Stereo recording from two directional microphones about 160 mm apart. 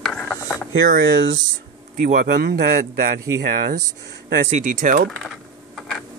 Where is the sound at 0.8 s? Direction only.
65° right (ahead or behind); by 2.7 s 85° right.